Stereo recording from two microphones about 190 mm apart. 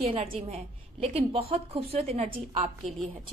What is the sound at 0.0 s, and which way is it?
A woman's voice, 30° right (ahead or behind).